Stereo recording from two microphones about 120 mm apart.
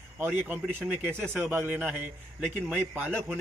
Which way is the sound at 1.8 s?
5° right (ahead or behind).